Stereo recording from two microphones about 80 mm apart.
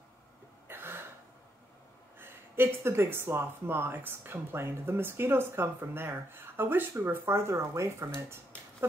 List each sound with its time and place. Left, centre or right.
0.7 s throat clearing: right
2.1 s speech: right